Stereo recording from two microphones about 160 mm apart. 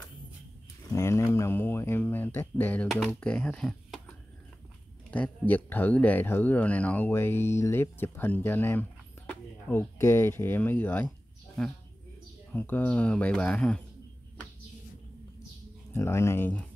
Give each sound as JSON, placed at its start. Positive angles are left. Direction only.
{"t": 0.8, "sound": "speech", "side_deg": 15}
{"t": 5.1, "sound": "speech", "side_deg": 10}
{"t": 15.9, "sound": "speech", "side_deg": 15}